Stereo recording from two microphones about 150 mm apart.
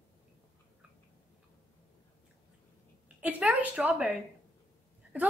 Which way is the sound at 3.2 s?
10° right (ahead or behind).